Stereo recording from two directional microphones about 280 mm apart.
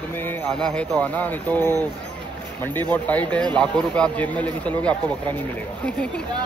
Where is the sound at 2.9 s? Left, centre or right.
Centre.